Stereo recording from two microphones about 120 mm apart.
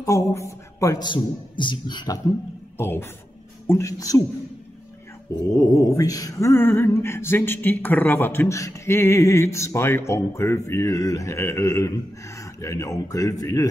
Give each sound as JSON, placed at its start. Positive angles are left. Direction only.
{"t": 0.0, "sound": "speech", "side_deg": 25}
{"t": 1.0, "sound": "a man's voice", "side_deg": 40}
{"t": 2.8, "sound": "speech", "side_deg": 20}
{"t": 5.5, "sound": "speech", "side_deg": 25}